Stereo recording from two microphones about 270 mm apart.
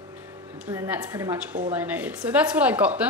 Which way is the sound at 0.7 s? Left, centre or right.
Centre.